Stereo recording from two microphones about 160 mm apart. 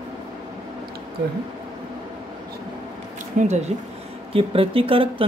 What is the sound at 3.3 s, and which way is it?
Speech, 45° right (ahead or behind).